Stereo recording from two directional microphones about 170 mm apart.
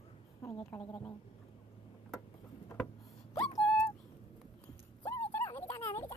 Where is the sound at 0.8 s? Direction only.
30° left (ahead or behind).